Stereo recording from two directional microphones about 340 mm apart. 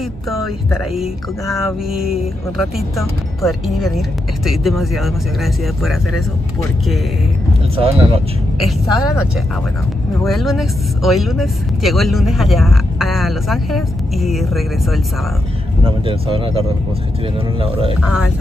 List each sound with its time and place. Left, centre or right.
0.3 s speech: centre
7.7 s speech: centre
8.5 s speech: centre
10.2 s speech: centre
16.1 s speech: centre
18.0 s speech: centre